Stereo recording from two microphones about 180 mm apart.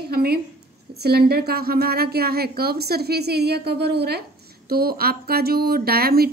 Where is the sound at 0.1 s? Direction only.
60° right (ahead or behind).